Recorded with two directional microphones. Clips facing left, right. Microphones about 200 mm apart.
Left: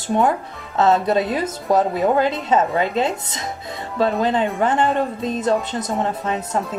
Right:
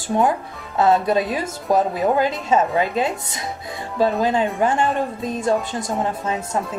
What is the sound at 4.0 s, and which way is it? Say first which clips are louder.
Speech: even; 5° right (ahead or behind).